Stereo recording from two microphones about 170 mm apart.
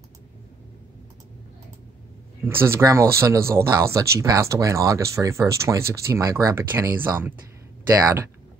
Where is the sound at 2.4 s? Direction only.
15° right (ahead or behind).